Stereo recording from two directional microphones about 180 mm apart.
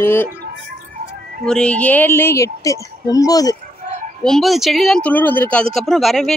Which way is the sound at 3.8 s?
40° right (ahead or behind).